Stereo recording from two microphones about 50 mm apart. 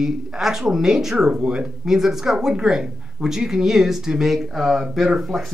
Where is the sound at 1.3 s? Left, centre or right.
Right.